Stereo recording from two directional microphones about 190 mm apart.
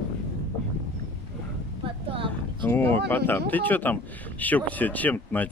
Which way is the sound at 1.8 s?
25° right (ahead or behind).